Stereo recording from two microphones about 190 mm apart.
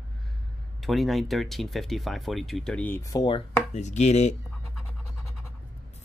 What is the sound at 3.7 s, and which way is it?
Speech, 40° left (ahead or behind).